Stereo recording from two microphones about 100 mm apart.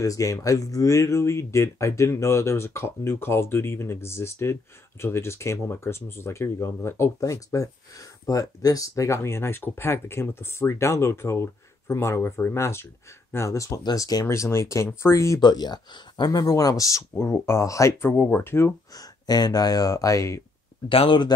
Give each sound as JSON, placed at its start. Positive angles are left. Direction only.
{"t": 0.0, "sound": "speech", "side_deg": 35}
{"t": 14.2, "sound": "speech", "side_deg": 30}
{"t": 15.4, "sound": "speech", "side_deg": 45}
{"t": 18.9, "sound": "speech", "side_deg": 40}
{"t": 20.9, "sound": "speech", "side_deg": 60}